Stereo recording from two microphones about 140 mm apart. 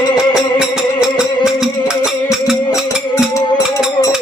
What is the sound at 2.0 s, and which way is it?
Music, 5° right (ahead or behind).